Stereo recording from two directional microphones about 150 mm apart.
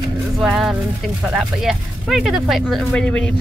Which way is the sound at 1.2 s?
Centre (ahead or behind).